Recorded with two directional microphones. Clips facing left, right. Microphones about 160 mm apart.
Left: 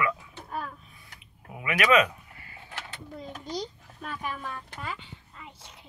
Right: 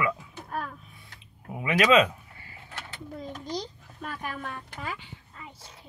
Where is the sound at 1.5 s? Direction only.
25° right (ahead or behind).